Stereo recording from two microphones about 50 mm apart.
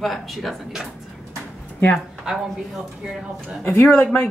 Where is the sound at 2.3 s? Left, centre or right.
Centre.